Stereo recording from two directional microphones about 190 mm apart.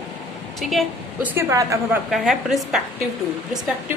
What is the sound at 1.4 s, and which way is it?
Speech, 15° right (ahead or behind).